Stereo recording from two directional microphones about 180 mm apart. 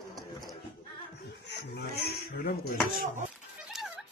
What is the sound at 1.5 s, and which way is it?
Chicken, 65° left (ahead or behind).